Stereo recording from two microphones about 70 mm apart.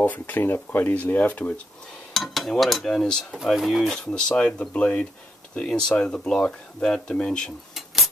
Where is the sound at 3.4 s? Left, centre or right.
Centre.